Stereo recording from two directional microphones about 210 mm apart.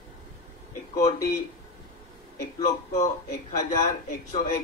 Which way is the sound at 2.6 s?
35° left (ahead or behind).